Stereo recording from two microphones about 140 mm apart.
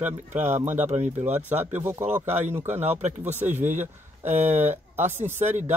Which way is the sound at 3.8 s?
15° right (ahead or behind).